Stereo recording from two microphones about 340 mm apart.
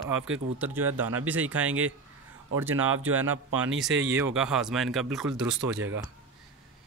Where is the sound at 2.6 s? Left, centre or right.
Right.